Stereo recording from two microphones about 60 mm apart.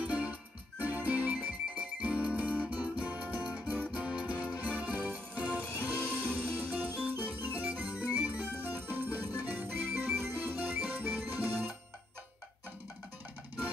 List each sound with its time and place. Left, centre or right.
0.0 s music: right
6.3 s organ: right